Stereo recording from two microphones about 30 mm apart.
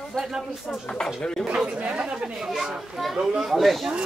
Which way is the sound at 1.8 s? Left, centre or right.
Right.